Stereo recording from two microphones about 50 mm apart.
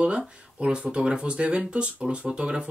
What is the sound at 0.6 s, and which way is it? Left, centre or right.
Speech, centre.